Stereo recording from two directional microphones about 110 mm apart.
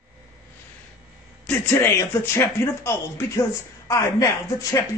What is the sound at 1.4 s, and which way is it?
Speech, 15° left (ahead or behind).